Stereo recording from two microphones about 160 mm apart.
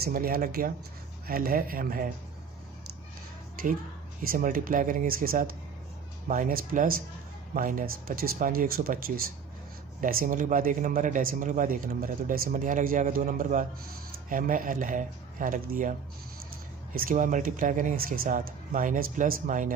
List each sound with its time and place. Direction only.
0.0 s speech: 65° right (ahead or behind)
4.2 s speech: 60° right (ahead or behind)
16.9 s speech: 60° right (ahead or behind)